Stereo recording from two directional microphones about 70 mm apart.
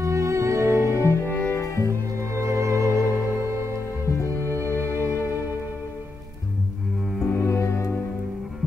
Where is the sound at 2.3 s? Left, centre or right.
Right.